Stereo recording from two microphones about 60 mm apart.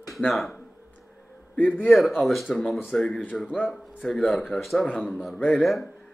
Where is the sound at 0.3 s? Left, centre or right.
Centre.